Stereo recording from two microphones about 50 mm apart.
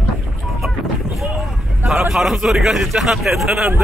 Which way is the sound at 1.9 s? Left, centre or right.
Centre.